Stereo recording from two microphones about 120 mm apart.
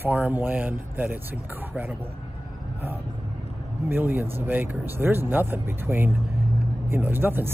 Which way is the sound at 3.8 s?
15° right (ahead or behind).